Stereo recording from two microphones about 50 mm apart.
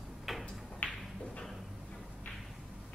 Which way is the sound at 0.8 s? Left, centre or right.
Left.